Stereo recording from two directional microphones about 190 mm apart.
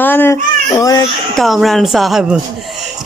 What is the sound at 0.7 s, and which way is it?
Baby cry, 20° left (ahead or behind).